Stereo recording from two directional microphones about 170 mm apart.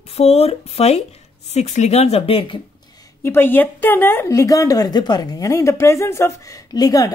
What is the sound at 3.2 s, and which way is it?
A woman's voice, 10° left (ahead or behind).